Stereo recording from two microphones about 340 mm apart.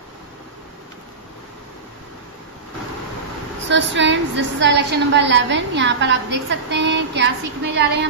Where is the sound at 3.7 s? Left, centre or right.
Right.